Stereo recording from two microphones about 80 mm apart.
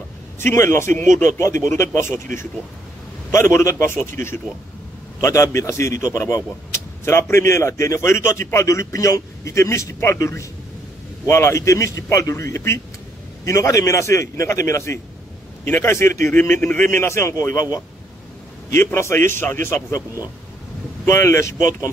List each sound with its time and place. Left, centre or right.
0.4 s a man's voice: left
3.3 s a man's voice: left
18.7 s a man's voice: left
21.0 s a man's voice: left